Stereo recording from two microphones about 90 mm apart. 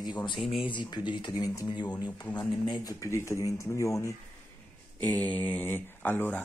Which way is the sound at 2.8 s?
35° left (ahead or behind).